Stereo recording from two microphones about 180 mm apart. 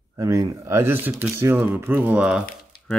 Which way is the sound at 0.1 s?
20° right (ahead or behind).